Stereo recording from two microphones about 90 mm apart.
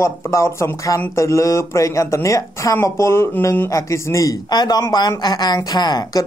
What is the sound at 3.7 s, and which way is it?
A woman's voice, 35° left (ahead or behind).